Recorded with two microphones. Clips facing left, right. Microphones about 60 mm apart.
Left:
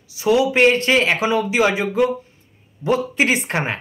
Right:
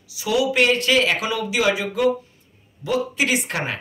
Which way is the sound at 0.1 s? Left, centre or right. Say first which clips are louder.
Left 4 dB; left.